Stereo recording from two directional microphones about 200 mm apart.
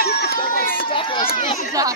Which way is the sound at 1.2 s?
40° left (ahead or behind).